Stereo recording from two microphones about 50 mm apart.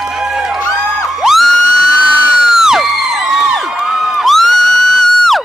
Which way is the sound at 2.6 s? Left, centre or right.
Centre.